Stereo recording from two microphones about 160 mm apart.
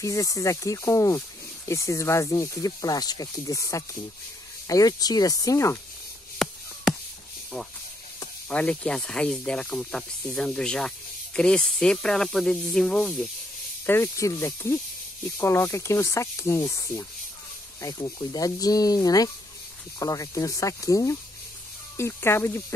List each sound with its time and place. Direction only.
0.0 s speech: 20° left (ahead or behind)
6.3 s a sound: 5° left (ahead or behind)
7.5 s speech: 5° left (ahead or behind)
13.8 s speech: 15° left (ahead or behind)